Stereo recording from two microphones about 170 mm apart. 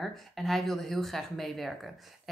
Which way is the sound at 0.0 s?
Centre (ahead or behind).